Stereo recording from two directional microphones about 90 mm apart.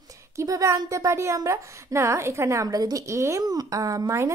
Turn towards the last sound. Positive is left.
turn(degrees=-35)  # may be behind; listen again after turning